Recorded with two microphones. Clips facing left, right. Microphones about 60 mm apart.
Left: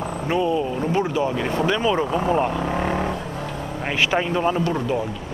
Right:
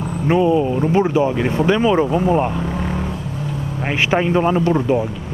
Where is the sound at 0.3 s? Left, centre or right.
Centre.